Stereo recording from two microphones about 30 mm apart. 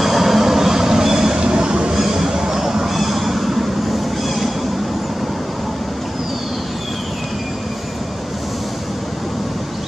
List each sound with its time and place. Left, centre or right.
0.0 s vehicle: centre
1.4 s train: right
2.0 s a sound: centre
2.7 s vehicle: centre